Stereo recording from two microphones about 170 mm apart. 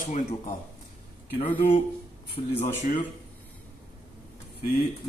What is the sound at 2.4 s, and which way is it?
Speech, 40° left (ahead or behind).